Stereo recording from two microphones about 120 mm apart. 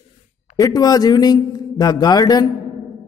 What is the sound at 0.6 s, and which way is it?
A man's voice, 30° left (ahead or behind).